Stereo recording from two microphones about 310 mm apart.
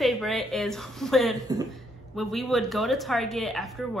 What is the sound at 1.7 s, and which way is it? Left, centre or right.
A woman's voice, centre.